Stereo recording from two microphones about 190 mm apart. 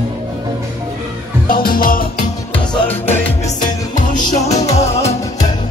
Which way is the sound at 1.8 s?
50° left (ahead or behind).